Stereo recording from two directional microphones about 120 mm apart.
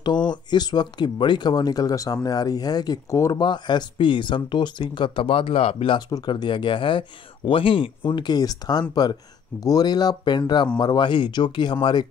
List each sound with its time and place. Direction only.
0.3 s speech: 35° left (ahead or behind)
5.9 s speech: 35° left (ahead or behind)